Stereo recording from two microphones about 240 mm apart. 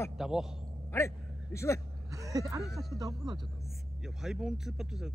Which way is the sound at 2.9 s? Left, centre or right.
Centre.